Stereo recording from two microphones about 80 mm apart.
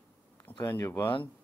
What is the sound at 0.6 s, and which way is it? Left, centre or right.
Speech, left.